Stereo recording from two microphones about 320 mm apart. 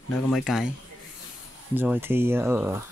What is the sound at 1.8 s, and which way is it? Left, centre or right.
Speech, centre.